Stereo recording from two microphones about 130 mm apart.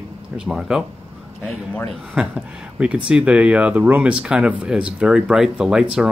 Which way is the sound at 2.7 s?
10° right (ahead or behind).